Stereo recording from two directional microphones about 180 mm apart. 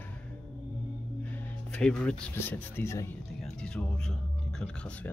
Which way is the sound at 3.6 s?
5° left (ahead or behind).